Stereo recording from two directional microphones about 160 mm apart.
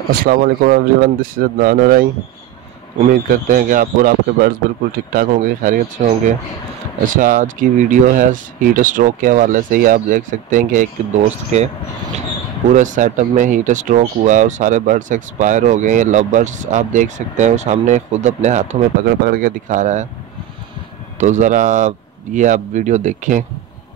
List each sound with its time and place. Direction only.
0.1 s speech: 65° right (ahead or behind)
3.1 s speech: 60° right (ahead or behind)
12.7 s speech: 50° right (ahead or behind)
19.0 s speech: 70° right (ahead or behind); by 20.1 s 50° right (ahead or behind)
21.2 s speech: 50° right (ahead or behind)